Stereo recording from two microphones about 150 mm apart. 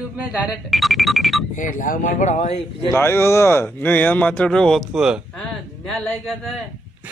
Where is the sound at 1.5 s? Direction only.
60° left (ahead or behind).